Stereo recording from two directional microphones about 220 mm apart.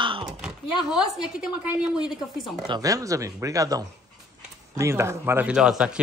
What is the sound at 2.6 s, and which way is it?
A man's voice, 15° right (ahead or behind).